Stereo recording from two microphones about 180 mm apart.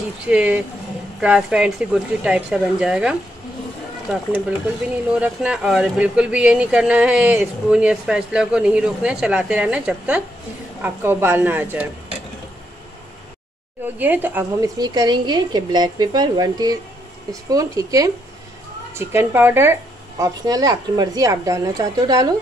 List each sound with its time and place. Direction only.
0.3 s speech: 5° right (ahead or behind)
5.1 s speech: 5° right (ahead or behind)
13.9 s speech: 10° right (ahead or behind)
14.8 s speech: 25° right (ahead or behind)